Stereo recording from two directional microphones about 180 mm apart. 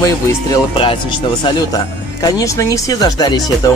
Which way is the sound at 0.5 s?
30° left (ahead or behind).